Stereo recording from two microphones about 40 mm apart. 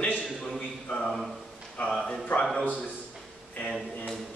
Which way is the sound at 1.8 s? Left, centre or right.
Centre.